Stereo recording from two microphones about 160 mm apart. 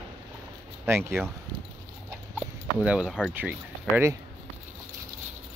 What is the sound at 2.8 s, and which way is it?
Speech, 5° right (ahead or behind).